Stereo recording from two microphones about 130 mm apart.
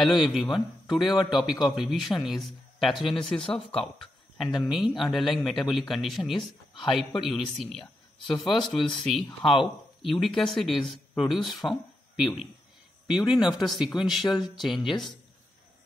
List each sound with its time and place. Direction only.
0.0 s a man's voice: centre (ahead or behind)
13.0 s a man's voice: 5° right (ahead or behind)